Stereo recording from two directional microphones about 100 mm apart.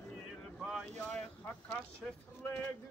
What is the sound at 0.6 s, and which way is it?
Wind noise, 5° right (ahead or behind).